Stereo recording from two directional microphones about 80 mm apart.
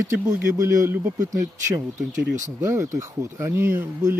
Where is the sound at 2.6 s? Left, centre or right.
Right.